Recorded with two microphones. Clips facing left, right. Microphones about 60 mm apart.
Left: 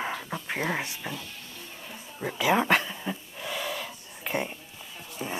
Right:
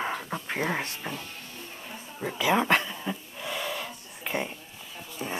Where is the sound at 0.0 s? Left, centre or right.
Centre.